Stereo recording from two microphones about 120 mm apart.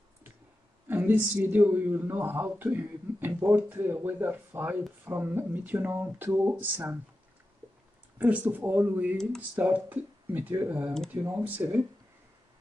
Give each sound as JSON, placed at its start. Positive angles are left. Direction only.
{"t": 0.8, "sound": "speech", "side_deg": -15}
{"t": 8.2, "sound": "speech", "side_deg": -15}